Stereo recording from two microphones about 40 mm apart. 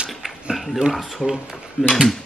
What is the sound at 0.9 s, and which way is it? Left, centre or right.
Speech, centre.